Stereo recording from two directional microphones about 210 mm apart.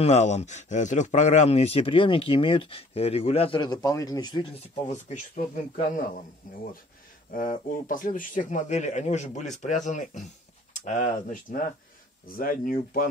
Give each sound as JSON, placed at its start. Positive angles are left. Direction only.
{"t": 0.0, "sound": "speech", "side_deg": 35}
{"t": 4.9, "sound": "speech", "side_deg": 35}
{"t": 7.3, "sound": "speech", "side_deg": 40}